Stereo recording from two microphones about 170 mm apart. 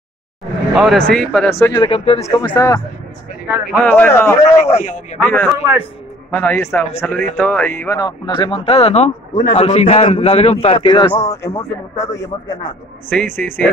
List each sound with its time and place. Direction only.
0.7 s speech: centre (ahead or behind)
1.6 s speech: 15° left (ahead or behind)
1.9 s a man's voice: 40° left (ahead or behind)
2.2 s speech: 25° left (ahead or behind)
3.4 s speech: 5° right (ahead or behind)
3.7 s speech: 10° left (ahead or behind)
4.5 s a man's voice: 40° left (ahead or behind)
5.2 s speech: 10° left (ahead or behind)
8.3 s a man's voice: 30° left (ahead or behind)
13.1 s speech: 10° left (ahead or behind)